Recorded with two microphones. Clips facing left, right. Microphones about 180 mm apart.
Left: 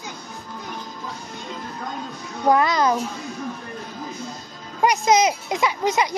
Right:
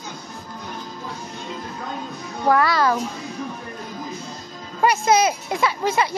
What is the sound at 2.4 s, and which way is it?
Speech, 20° left (ahead or behind).